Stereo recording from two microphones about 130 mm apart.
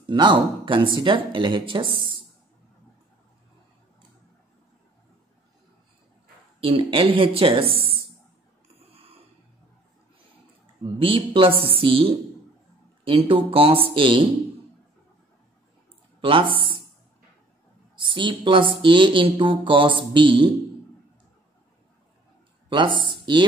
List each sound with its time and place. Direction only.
0.0 s a woman's voice: 35° right (ahead or behind)
6.6 s speech: 45° right (ahead or behind)
11.0 s speech: 45° right (ahead or behind)
16.2 s a sound: 40° right (ahead or behind)
17.9 s a woman's voice: 40° right (ahead or behind)
22.7 s speech: 40° right (ahead or behind)